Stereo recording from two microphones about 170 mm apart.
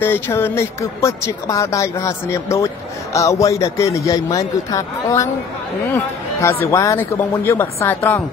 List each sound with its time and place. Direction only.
0.0 s speech: 10° left (ahead or behind)